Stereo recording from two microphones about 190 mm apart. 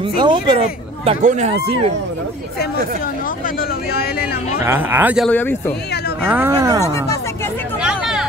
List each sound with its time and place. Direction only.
0.1 s speech: 25° right (ahead or behind)
4.2 s speech: 10° right (ahead or behind)
5.3 s speech: 10° left (ahead or behind)
6.2 s speech: 10° right (ahead or behind)
7.8 s a sound: 5° right (ahead or behind)